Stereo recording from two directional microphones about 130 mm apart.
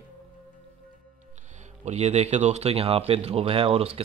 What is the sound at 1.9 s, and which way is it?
Speech, 55° right (ahead or behind).